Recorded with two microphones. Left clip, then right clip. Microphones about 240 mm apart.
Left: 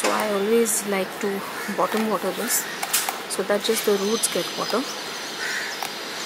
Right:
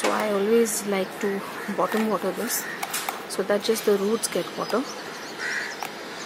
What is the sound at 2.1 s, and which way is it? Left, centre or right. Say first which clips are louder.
Speech: left 1 dB; right.